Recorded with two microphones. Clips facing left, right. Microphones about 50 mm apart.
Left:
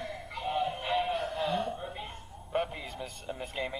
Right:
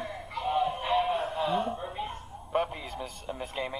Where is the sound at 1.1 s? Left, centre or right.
Right.